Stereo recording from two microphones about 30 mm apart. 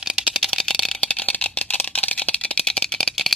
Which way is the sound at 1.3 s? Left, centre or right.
Left.